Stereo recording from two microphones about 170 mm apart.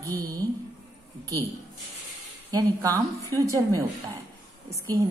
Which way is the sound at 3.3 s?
15° left (ahead or behind).